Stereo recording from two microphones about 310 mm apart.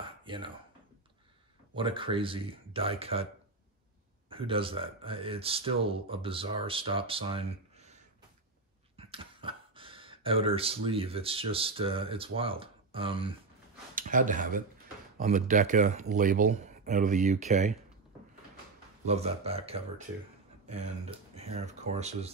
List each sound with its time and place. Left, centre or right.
0.2 s dishes: centre
1.8 s speech: centre
4.3 s speech: centre
8.9 s speech: centre
19.0 s speech: centre